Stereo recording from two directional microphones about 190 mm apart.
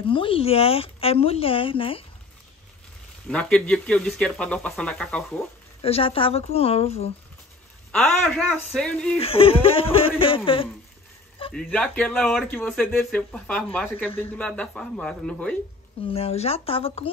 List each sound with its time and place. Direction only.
0.1 s speech: 30° left (ahead or behind)
3.3 s speech: 5° left (ahead or behind)
5.8 s a woman's voice: 30° left (ahead or behind)
7.9 s speech: 5° left (ahead or behind)
9.2 s speech: 30° left (ahead or behind)
11.5 s a man's voice: 5° left (ahead or behind)
16.1 s a woman's voice: 30° left (ahead or behind)